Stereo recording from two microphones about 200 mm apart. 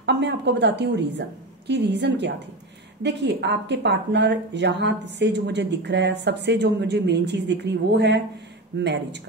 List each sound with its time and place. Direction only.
0.0 s speech: 60° right (ahead or behind)